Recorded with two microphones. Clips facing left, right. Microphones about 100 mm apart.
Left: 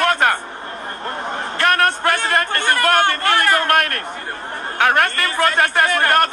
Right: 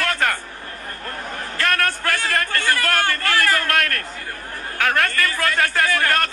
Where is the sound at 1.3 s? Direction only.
25° left (ahead or behind).